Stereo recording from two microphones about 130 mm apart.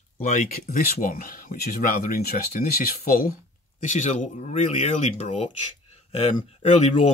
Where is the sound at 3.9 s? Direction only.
65° left (ahead or behind).